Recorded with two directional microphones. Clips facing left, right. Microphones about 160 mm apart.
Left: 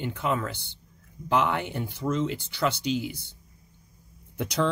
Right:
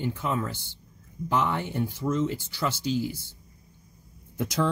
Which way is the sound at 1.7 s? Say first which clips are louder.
Right 1 dB; 5° right (ahead or behind).